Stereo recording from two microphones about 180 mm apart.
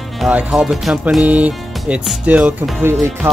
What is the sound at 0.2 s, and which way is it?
Speech, 5° right (ahead or behind).